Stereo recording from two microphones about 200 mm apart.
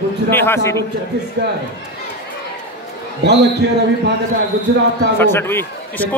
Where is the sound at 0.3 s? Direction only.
10° left (ahead or behind).